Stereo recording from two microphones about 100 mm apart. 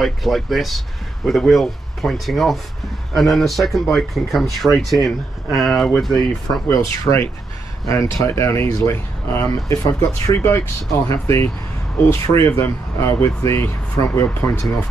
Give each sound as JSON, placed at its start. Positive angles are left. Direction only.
{"t": 0.0, "sound": "speech", "side_deg": 0}
{"t": 6.7, "sound": "speech", "side_deg": 30}